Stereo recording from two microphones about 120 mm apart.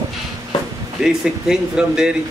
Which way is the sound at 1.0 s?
5° right (ahead or behind).